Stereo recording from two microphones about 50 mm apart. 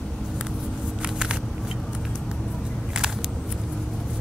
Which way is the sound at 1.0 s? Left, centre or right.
Centre.